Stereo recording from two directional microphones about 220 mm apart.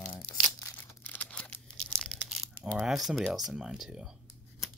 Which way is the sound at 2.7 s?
Centre (ahead or behind).